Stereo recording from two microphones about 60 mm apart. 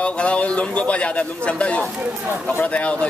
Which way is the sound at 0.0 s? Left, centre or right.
Centre.